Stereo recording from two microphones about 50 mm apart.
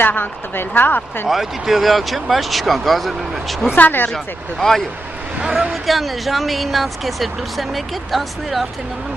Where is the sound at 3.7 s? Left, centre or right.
Left.